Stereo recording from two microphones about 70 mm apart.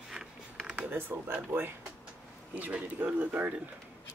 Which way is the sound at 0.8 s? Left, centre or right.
Right.